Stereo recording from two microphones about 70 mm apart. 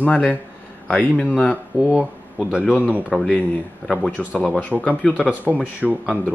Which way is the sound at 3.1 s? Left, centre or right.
Centre.